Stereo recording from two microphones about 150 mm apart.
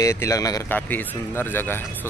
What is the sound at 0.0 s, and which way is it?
Speech, 20° left (ahead or behind).